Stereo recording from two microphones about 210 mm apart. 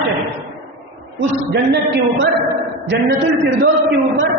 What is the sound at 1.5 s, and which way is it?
Speech, 55° right (ahead or behind).